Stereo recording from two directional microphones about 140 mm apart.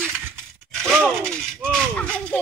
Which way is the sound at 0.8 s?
5° left (ahead or behind).